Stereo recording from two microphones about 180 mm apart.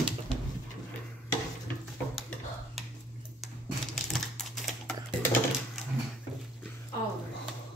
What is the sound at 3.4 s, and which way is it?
Typing, centre (ahead or behind).